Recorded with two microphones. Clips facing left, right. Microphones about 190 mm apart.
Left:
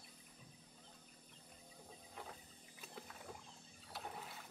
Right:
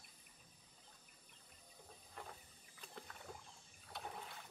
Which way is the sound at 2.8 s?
5° left (ahead or behind).